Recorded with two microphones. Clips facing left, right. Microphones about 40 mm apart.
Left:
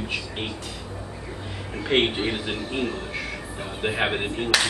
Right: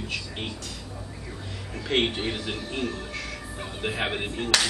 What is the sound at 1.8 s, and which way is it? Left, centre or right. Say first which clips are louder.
Speech: left 3 dB; centre.